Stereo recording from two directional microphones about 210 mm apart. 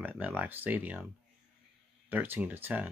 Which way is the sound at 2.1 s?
10° right (ahead or behind).